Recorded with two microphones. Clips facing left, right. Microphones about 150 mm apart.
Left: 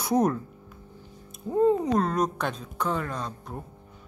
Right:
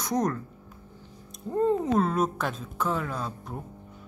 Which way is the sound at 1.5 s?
Centre (ahead or behind).